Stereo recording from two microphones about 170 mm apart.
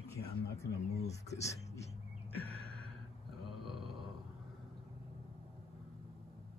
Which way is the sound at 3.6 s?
Centre (ahead or behind).